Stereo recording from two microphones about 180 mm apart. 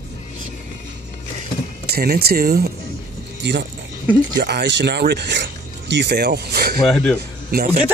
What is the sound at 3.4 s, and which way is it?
Speech, 80° right.